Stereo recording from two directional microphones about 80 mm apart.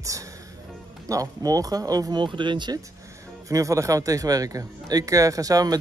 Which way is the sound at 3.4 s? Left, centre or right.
Right.